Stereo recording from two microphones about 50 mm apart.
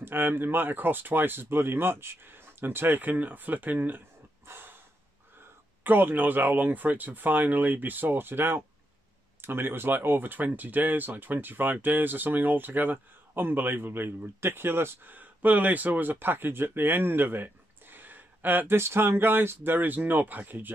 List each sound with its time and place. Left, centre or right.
0.0 s speech: right
4.5 s a sound: right
5.9 s speech: right
15.1 s speech: right
18.8 s speech: right